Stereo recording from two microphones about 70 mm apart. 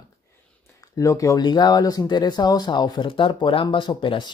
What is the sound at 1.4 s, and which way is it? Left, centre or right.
Speech, left.